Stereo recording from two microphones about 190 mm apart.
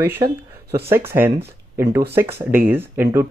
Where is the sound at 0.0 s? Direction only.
15° right (ahead or behind).